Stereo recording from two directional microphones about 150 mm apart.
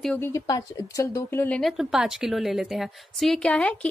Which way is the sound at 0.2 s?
25° left (ahead or behind).